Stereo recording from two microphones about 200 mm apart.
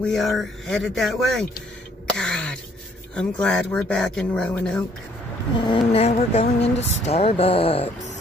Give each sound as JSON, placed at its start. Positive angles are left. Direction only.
{"t": 0.0, "sound": "speech", "side_deg": 0}
{"t": 2.1, "sound": "throat clearing", "side_deg": 5}
{"t": 3.2, "sound": "speech", "side_deg": 5}
{"t": 5.6, "sound": "speech", "side_deg": 25}